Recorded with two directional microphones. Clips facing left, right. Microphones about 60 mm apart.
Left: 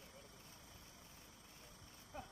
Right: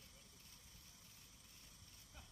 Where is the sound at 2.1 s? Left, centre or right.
Left.